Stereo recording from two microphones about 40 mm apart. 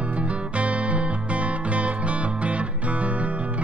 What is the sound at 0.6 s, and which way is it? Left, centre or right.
Music, right.